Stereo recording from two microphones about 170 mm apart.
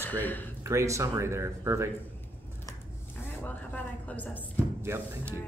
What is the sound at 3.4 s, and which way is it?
A woman's voice, 10° left (ahead or behind).